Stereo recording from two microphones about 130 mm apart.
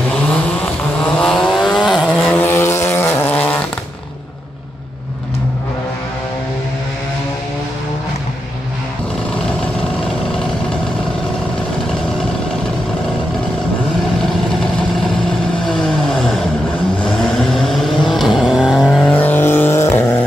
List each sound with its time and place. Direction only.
1.0 s vehicle: 5° left (ahead or behind)
2.4 s vehicle: 20° left (ahead or behind)
15.6 s vehicle: 5° left (ahead or behind)
19.0 s vehicle: 10° left (ahead or behind)